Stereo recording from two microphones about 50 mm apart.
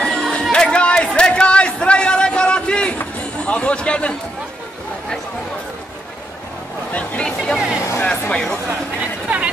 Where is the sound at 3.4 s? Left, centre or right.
Left.